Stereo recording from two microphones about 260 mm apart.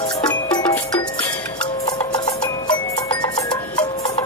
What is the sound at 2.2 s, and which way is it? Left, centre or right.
Music, centre.